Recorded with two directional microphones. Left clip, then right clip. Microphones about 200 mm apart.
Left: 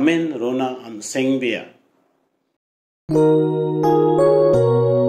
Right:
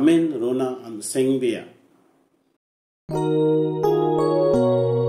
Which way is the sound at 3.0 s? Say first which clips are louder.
Left 5 dB; centre (ahead or behind).